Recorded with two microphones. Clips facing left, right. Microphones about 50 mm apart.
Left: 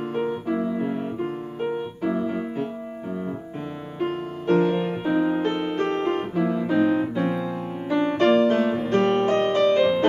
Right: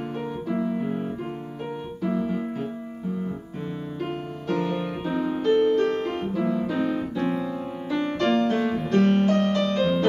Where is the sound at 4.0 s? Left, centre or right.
Left.